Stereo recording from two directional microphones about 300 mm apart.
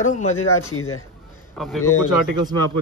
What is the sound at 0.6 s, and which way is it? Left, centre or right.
Speech, left.